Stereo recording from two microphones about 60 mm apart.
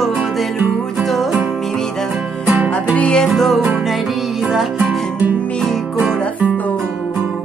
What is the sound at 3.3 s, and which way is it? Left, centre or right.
Music, centre.